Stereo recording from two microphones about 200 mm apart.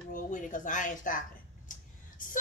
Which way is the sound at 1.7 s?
40° left (ahead or behind).